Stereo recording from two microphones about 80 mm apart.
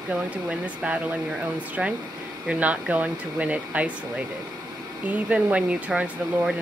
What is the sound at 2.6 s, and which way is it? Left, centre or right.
Speech, centre.